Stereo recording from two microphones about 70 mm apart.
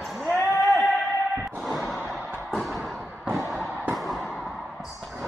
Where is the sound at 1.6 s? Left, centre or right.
Centre.